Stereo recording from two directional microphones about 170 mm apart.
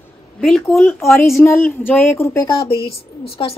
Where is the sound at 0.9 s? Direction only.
15° left (ahead or behind).